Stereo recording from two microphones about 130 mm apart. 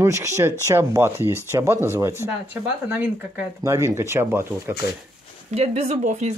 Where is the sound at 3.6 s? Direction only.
20° right (ahead or behind).